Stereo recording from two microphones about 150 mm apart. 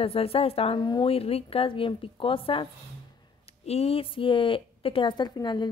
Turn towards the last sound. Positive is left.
turn(degrees=30)  # may be behind; listen again after turning